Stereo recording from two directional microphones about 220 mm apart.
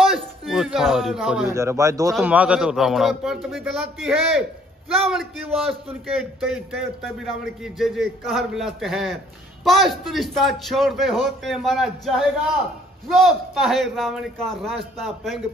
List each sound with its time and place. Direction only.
0.0 s a man's voice: centre (ahead or behind)